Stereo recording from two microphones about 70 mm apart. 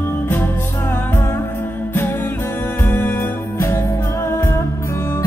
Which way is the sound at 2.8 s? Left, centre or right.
Left.